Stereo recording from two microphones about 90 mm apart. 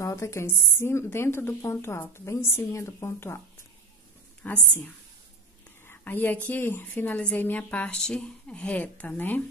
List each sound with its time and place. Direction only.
0.0 s a woman's voice: 35° left (ahead or behind)
4.4 s a woman's voice: 15° left (ahead or behind)
5.9 s a woman's voice: 20° left (ahead or behind)